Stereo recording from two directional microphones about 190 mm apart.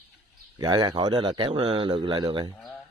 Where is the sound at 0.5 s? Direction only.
20° right (ahead or behind).